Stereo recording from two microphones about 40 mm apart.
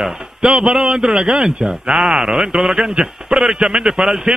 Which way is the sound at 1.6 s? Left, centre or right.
Centre.